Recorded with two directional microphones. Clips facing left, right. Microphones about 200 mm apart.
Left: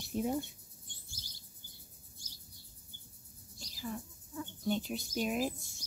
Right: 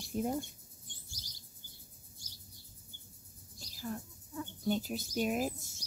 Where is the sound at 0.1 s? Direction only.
Centre (ahead or behind).